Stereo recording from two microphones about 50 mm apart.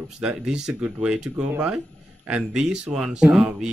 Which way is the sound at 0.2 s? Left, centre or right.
Centre.